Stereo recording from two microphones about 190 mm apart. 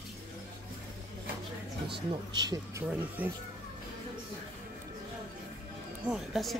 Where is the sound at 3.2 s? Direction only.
10° right (ahead or behind).